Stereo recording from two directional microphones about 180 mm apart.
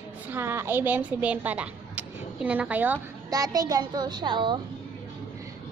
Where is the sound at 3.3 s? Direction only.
20° right (ahead or behind).